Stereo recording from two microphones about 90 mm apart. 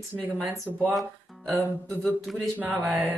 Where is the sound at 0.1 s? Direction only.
20° right (ahead or behind).